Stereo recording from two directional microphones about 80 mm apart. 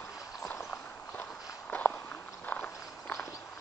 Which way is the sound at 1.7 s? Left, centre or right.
Centre.